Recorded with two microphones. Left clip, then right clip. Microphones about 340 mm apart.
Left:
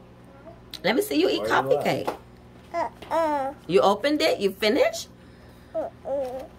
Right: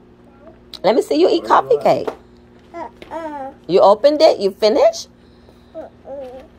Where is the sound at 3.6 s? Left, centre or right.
Centre.